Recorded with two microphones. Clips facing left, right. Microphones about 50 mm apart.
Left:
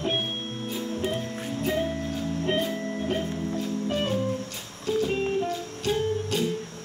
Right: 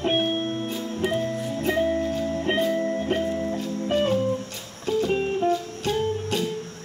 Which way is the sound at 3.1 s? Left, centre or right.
Right.